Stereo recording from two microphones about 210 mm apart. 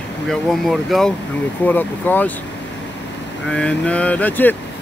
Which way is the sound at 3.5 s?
5° left (ahead or behind).